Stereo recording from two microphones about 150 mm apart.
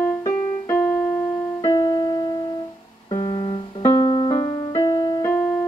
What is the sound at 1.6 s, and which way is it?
Music, 25° left (ahead or behind).